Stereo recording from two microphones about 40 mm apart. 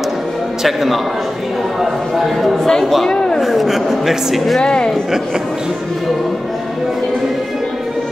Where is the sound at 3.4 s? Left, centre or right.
Centre.